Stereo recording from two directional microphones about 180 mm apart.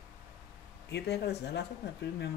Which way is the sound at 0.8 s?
70° left (ahead or behind).